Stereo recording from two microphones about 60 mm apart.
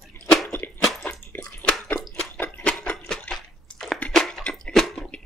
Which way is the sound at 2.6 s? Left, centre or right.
Centre.